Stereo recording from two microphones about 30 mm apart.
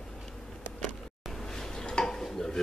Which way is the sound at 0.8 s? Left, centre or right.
Centre.